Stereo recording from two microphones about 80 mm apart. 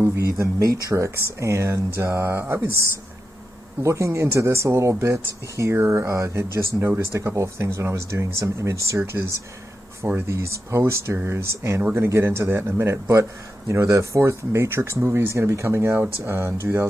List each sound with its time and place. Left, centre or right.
0.0 s a man's voice: right
3.8 s a man's voice: right